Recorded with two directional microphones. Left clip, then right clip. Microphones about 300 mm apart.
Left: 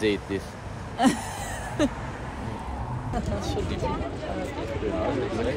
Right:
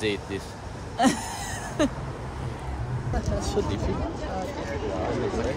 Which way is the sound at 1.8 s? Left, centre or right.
Centre.